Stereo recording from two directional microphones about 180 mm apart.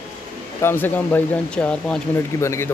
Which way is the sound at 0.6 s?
10° left (ahead or behind).